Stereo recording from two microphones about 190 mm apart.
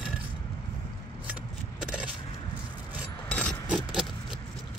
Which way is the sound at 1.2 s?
5° right (ahead or behind).